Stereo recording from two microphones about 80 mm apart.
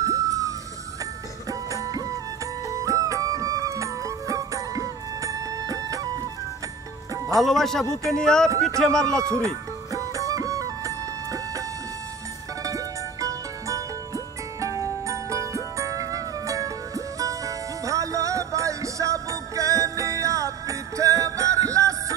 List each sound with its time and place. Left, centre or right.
0.0 s music: right
7.3 s speech: centre
9.2 s music: right
12.6 s music: right